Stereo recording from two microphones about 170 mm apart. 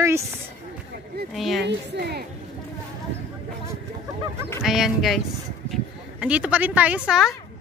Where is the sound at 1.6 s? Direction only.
80° right.